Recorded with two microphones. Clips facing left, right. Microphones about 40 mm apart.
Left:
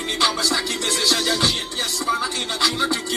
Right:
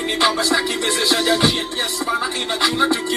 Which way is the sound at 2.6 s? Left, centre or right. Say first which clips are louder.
Right 4 dB; right.